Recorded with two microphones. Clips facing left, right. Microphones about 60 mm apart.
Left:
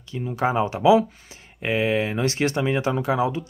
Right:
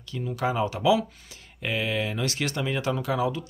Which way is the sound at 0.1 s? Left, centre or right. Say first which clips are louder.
Left 4 dB; left.